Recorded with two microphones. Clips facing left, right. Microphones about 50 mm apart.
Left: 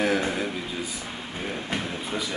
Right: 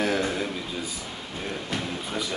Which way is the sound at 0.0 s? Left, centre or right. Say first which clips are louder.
Left 1 dB; centre.